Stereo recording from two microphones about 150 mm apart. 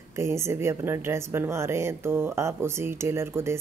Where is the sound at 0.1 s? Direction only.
20° right (ahead or behind).